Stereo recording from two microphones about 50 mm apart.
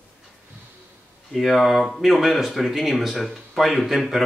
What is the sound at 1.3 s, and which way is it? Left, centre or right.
Speech, centre.